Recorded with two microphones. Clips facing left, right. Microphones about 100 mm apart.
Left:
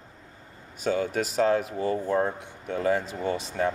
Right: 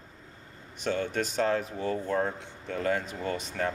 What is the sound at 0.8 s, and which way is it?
Speech, 5° left (ahead or behind).